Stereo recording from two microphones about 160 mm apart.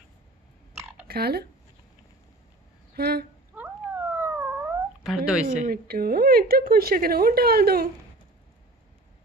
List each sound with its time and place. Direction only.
1.0 s speech: 80° right
3.0 s speech: 75° right (ahead or behind)
3.5 s dog: 10° right (ahead or behind)
5.7 s speech: 70° right (ahead or behind)